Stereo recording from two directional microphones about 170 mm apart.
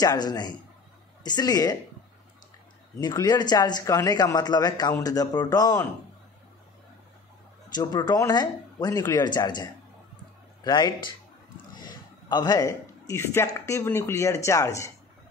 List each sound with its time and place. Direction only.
0.0 s speech: 25° left (ahead or behind)
3.0 s speech: 25° left (ahead or behind)
7.7 s speech: 25° left (ahead or behind)